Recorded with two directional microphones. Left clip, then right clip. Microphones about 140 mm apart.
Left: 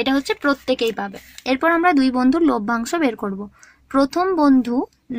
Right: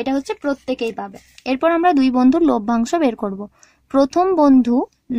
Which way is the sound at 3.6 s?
85° right.